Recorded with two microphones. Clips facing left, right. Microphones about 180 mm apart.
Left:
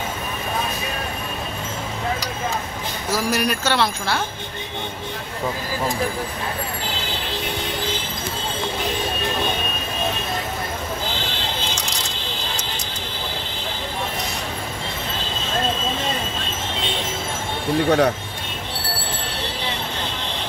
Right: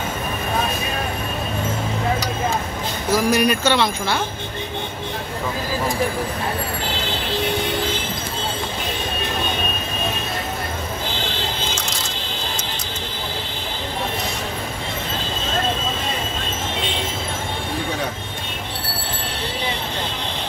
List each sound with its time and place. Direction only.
3.1 s speech: 5° left (ahead or behind)
17.8 s speech: 70° left (ahead or behind)